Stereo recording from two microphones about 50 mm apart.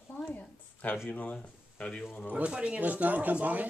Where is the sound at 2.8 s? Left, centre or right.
Right.